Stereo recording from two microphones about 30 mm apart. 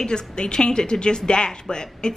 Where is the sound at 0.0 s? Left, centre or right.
Left.